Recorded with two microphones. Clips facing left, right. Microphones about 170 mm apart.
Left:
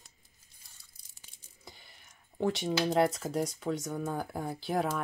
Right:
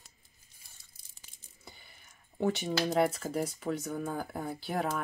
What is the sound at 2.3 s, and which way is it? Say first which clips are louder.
Speech: even; 5° right (ahead or behind).